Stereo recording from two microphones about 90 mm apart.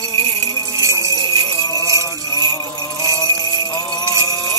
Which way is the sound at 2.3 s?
45° left (ahead or behind).